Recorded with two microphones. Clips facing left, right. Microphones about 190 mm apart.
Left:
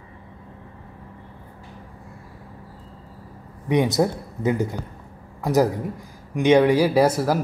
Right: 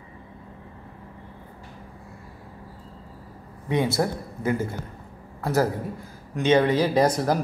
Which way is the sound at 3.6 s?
15° left (ahead or behind).